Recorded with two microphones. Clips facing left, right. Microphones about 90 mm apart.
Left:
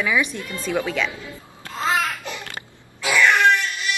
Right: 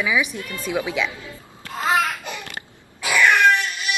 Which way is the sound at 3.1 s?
15° right (ahead or behind).